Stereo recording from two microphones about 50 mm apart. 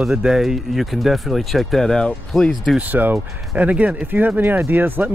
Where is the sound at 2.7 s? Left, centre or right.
Right.